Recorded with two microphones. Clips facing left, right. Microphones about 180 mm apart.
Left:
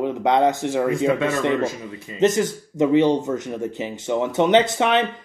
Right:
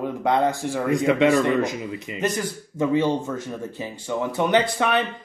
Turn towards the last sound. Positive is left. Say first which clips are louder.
# left 3 dB
turn(degrees=20)  # may be behind; listen again after turning